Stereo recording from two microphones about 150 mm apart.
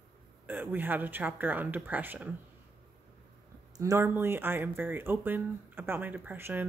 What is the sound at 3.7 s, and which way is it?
Speech, 20° right (ahead or behind).